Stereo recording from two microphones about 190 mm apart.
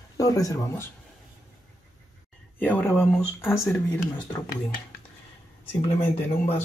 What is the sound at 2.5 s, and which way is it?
Speech, 10° left (ahead or behind).